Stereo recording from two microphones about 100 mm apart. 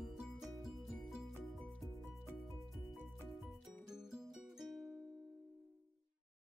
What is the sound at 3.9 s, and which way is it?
Music, 5° right (ahead or behind).